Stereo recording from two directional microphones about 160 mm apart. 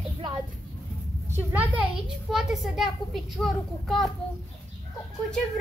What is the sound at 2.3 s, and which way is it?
A woman's voice, centre (ahead or behind).